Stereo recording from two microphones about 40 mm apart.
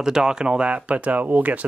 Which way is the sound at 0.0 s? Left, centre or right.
Centre.